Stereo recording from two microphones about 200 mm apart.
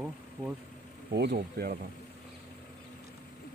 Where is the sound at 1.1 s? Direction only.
50° right (ahead or behind).